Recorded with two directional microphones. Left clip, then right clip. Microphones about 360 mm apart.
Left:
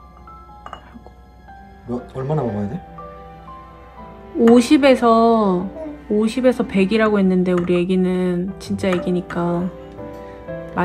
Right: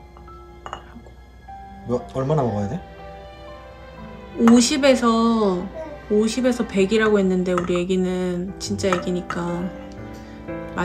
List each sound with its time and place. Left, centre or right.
1.9 s speech: centre
4.6 s speech: centre